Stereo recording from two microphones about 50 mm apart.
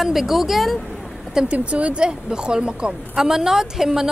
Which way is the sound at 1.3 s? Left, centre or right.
Right.